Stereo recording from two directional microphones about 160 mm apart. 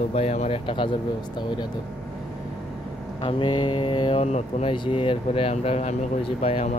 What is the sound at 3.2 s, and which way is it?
Speech, 30° left (ahead or behind).